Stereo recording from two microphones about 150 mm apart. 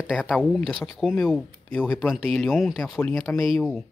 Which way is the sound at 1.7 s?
10° left (ahead or behind).